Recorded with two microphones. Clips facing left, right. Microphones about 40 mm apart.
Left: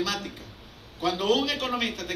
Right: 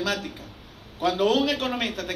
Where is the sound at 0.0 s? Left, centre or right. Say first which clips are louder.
Right 2 dB; right.